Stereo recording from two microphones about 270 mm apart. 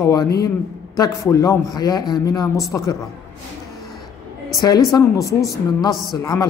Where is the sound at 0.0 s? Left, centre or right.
Centre.